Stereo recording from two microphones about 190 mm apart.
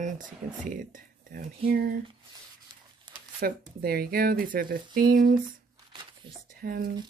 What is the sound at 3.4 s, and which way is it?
Speech, 55° right (ahead or behind).